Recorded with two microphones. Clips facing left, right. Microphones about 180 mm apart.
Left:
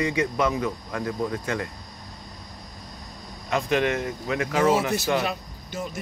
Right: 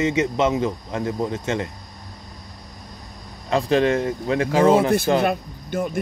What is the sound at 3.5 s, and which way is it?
Speech, 30° right (ahead or behind).